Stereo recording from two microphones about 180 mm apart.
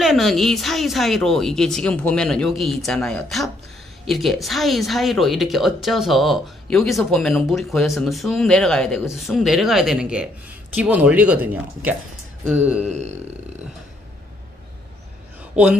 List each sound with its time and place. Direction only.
0.0 s speech: centre (ahead or behind)
12.8 s a man's voice: 40° right (ahead or behind)
15.5 s speech: 5° right (ahead or behind)